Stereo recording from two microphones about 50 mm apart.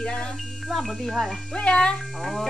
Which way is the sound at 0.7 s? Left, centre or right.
Centre.